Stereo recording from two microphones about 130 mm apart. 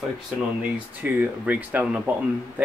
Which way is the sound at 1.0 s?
15° right (ahead or behind).